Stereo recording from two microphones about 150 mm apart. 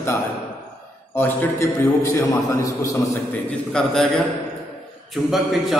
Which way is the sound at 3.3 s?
5° left (ahead or behind).